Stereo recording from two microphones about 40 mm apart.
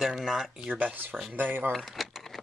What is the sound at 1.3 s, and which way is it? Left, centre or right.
Speech, right.